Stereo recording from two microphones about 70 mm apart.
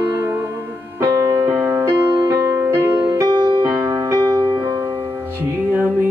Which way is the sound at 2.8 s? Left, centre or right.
Right.